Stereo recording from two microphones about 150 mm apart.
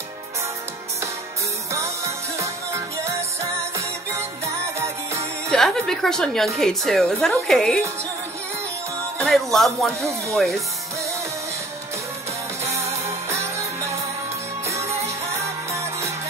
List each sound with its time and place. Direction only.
2.3 s music: 20° right (ahead or behind)
4.7 s music: 20° right (ahead or behind)
5.5 s a woman's voice: 5° left (ahead or behind)
9.2 s a woman's voice: centre (ahead or behind)
13.3 s music: 20° right (ahead or behind)